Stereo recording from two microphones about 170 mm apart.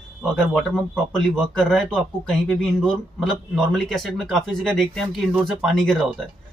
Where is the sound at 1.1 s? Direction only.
5° left (ahead or behind).